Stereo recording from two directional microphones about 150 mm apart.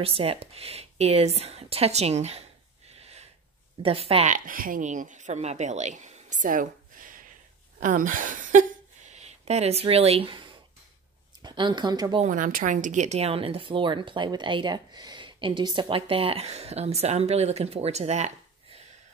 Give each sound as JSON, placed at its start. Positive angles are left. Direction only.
{"t": 0.0, "sound": "speech", "side_deg": -40}
{"t": 3.0, "sound": "a sound", "side_deg": -45}
{"t": 3.8, "sound": "speech", "side_deg": -40}
{"t": 4.3, "sound": "speech", "side_deg": -65}
{"t": 12.2, "sound": "speech", "side_deg": -60}